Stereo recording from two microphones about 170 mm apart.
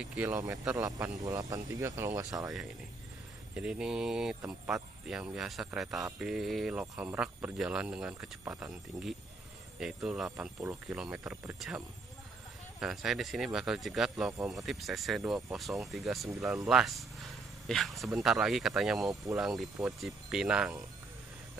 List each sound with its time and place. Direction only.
0.0 s speech: 5° right (ahead or behind)
0.8 s speech: 20° right (ahead or behind)
3.5 s speech: 5° right (ahead or behind)
8.9 s speech: 20° right (ahead or behind)
10.0 s speech: 5° right (ahead or behind)
12.8 s speech: centre (ahead or behind)